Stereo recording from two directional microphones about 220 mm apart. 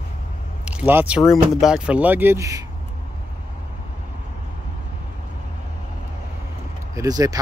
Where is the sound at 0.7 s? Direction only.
5° right (ahead or behind).